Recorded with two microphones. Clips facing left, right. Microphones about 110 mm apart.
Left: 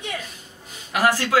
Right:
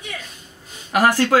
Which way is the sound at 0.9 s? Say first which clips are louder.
Right 4 dB; 55° right (ahead or behind).